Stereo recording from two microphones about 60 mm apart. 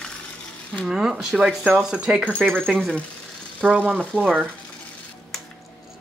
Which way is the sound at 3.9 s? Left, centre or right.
Centre.